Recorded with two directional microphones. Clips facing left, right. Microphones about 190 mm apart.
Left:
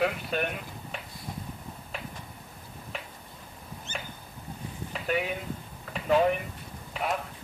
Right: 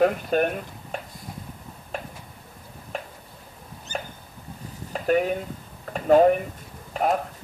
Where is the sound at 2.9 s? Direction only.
45° right (ahead or behind).